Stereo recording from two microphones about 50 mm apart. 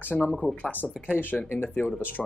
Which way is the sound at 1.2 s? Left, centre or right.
Left.